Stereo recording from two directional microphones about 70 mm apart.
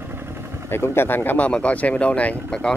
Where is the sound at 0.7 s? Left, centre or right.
Left; by 2.7 s centre.